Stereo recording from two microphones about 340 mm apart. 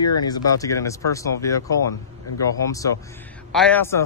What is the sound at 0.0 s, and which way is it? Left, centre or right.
Speech, centre.